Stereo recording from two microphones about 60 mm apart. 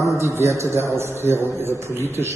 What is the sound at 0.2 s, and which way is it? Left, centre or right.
A man's voice, right.